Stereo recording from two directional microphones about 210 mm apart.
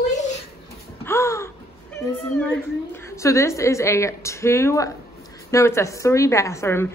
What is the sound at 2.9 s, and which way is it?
A woman's voice, 15° left (ahead or behind).